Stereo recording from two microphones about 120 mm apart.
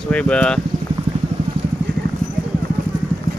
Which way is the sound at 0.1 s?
10° left (ahead or behind).